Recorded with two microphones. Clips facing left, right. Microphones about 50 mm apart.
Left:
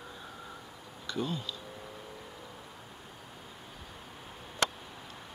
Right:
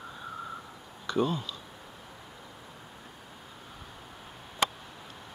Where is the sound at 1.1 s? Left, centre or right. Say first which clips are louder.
Right 6 dB; right.